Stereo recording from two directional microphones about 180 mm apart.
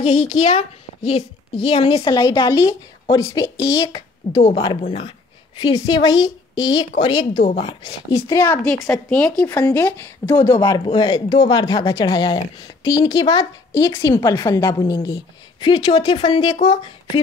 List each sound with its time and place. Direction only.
0.0 s a woman's voice: 40° left (ahead or behind)
8.1 s speech: 15° left (ahead or behind)
10.6 s speech: 25° left (ahead or behind)